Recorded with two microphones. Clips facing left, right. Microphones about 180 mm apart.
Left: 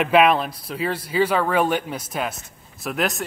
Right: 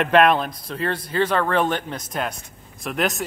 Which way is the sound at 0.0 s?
5° left (ahead or behind).